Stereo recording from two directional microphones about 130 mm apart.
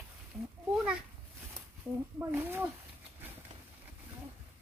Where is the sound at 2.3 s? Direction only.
15° right (ahead or behind).